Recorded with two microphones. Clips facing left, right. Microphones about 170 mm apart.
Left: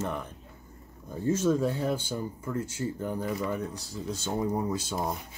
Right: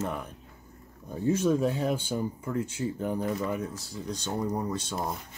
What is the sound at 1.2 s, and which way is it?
Speech, 15° right (ahead or behind).